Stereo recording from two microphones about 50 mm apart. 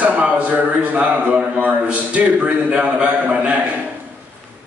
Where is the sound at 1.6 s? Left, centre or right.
Right.